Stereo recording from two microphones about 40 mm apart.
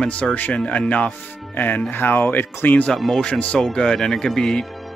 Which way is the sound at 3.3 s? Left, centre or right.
Left.